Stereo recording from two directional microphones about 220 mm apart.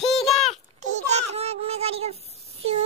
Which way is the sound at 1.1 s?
30° right (ahead or behind).